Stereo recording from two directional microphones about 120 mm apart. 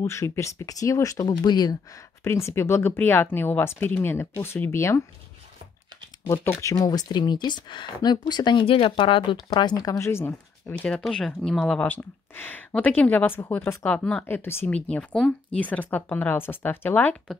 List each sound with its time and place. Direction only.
0.0 s speech: 25° left (ahead or behind)
2.2 s speech: 20° left (ahead or behind)
6.2 s speech: 20° left (ahead or behind)
9.9 s speech: 20° left (ahead or behind)
10.9 s speech: 5° left (ahead or behind)